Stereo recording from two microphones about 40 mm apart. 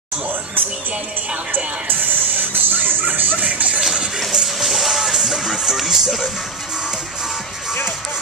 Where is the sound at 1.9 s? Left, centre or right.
Right.